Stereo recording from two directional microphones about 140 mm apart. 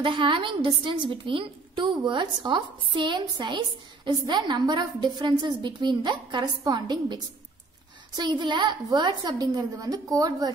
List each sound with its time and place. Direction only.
0.0 s a woman's voice: 35° right (ahead or behind)
8.2 s a woman's voice: 35° right (ahead or behind)